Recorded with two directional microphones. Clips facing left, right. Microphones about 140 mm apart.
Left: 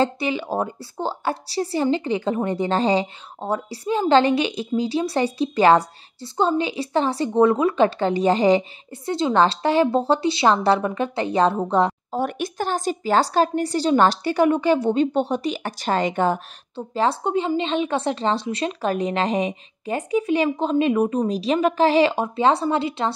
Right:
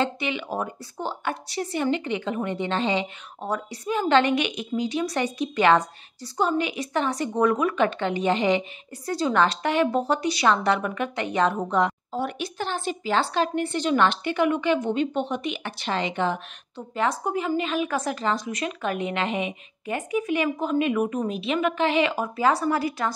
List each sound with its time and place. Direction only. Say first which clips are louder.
0.0 s a woman's voice: left 5 dB; 35° left (ahead or behind)
16.7 s a woman's voice: left 4 dB; 30° left (ahead or behind)